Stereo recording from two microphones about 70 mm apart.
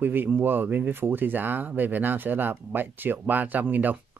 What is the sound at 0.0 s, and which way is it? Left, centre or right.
Speech, right.